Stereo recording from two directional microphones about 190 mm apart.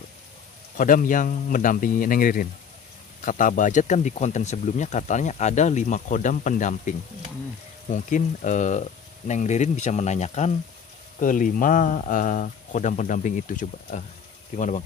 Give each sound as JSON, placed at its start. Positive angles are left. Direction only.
{"t": 0.7, "sound": "speech", "side_deg": 45}